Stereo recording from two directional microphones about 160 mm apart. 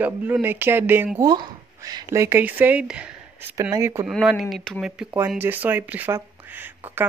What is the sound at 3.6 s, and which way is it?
Speech, 20° right (ahead or behind).